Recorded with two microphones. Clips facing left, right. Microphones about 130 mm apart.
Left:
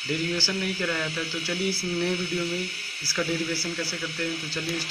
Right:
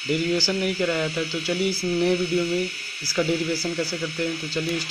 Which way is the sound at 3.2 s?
15° right (ahead or behind).